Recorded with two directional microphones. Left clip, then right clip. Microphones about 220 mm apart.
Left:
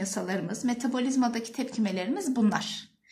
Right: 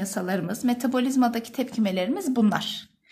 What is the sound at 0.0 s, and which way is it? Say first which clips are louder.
A woman's voice: right 3 dB; 35° right (ahead or behind).